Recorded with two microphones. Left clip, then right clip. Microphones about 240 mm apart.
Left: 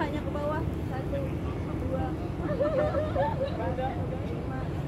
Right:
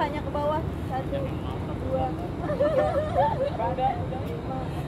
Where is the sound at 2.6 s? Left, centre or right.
Right.